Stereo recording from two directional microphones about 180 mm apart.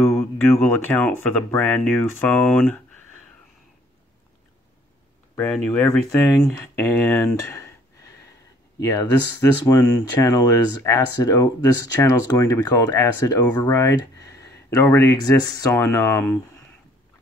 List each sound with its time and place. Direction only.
0.0 s speech: 15° left (ahead or behind)
5.3 s speech: 15° left (ahead or behind)